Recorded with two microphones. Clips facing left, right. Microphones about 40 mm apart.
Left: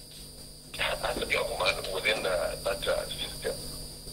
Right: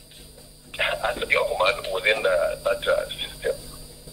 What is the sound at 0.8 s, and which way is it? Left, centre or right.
Speech, right.